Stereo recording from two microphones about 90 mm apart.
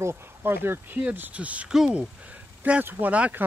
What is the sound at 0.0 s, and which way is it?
Speech, 25° right (ahead or behind).